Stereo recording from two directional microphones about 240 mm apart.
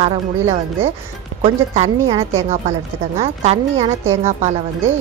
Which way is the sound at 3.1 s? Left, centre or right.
Right.